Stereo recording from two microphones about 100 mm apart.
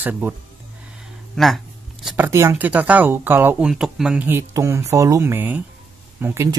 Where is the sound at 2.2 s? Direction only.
30° right (ahead or behind).